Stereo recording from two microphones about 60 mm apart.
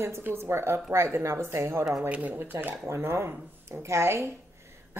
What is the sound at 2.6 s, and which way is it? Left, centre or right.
Speech, right.